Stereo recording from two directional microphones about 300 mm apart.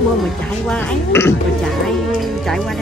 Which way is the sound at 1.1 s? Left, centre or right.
Centre.